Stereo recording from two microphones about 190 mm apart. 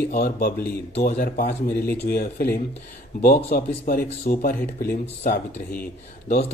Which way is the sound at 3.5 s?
50° left (ahead or behind).